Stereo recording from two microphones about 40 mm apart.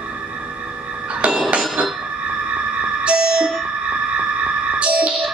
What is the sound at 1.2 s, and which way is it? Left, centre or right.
Hammer, right.